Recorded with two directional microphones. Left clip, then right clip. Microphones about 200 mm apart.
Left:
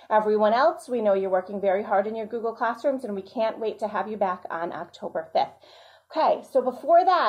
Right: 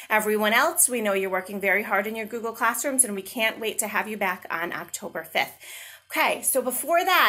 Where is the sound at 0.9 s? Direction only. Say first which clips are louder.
Left 3 dB; 45° right (ahead or behind).